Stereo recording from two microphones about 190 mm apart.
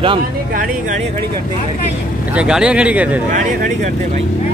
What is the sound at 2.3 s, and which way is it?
Speech, 5° right (ahead or behind).